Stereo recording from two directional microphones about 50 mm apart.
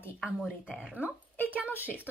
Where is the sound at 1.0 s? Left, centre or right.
Right.